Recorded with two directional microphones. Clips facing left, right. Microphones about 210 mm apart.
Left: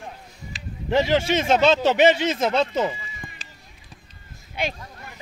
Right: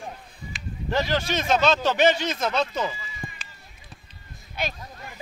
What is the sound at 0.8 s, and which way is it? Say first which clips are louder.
Speech: left 5 dB; 25° left (ahead or behind).